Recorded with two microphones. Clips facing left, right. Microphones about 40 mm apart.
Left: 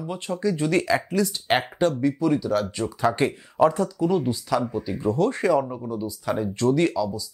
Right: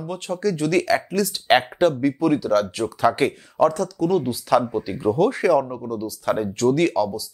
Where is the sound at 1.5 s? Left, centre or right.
Right.